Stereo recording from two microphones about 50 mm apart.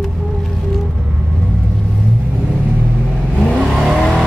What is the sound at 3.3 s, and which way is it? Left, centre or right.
Vehicle, centre.